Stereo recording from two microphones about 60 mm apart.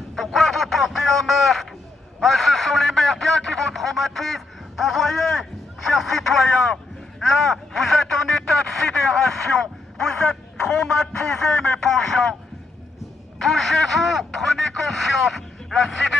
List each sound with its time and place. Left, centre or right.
0.1 s a sound: centre
2.1 s a man's voice: centre
13.4 s speech: centre